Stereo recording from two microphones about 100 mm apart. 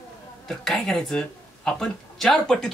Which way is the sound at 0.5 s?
Centre (ahead or behind).